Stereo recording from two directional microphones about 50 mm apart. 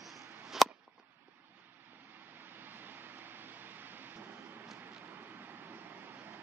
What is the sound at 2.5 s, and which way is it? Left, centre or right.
Vehicle, right.